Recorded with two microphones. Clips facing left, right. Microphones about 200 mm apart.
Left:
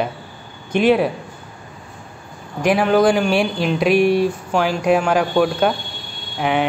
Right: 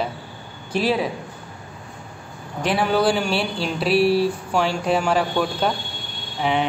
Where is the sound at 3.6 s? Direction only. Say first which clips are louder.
Left 2 dB; 30° right (ahead or behind).